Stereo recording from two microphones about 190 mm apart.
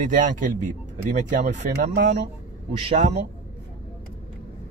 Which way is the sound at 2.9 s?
35° right (ahead or behind).